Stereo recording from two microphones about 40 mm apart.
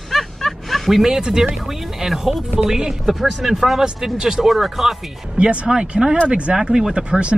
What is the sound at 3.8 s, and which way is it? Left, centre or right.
Speech, centre.